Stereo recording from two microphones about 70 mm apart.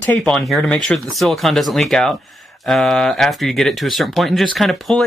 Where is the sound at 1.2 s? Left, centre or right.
Centre.